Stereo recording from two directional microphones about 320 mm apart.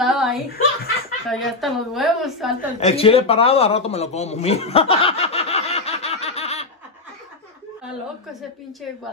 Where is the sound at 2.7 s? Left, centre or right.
Centre.